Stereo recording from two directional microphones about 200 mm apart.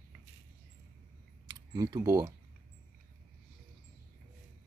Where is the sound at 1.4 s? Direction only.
20° right (ahead or behind).